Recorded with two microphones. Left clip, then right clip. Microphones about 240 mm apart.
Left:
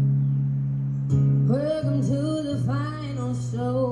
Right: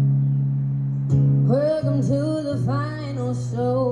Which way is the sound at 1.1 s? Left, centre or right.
Centre.